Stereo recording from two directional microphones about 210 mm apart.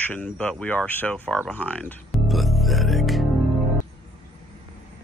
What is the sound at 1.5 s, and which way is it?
Music, 5° left (ahead or behind).